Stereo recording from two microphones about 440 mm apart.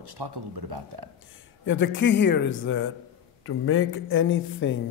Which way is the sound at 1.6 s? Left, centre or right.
Left.